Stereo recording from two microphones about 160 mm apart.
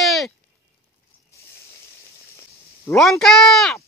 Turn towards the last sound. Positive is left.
turn(degrees=0)  # may be behind; listen again after turning